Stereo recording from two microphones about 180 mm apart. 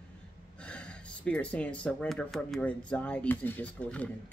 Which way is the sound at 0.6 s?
5° left (ahead or behind).